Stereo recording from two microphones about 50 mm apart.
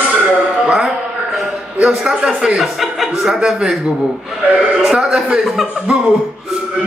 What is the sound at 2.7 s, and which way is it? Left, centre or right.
Chuckle, centre.